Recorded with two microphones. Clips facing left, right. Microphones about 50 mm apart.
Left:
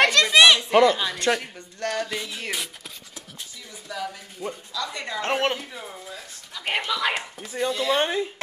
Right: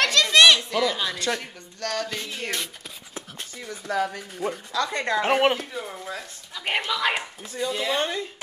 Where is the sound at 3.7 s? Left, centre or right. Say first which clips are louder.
Right 7 dB; right.